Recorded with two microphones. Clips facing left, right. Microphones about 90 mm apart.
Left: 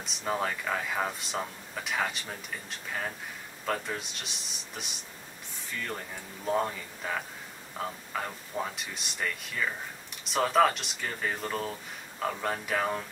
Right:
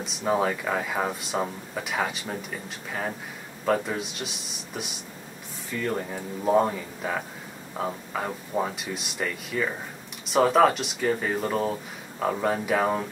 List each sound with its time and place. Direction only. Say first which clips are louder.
0.0 s speech: right 7 dB; 5° right (ahead or behind)
8.7 s speech: right 6 dB; 5° right (ahead or behind)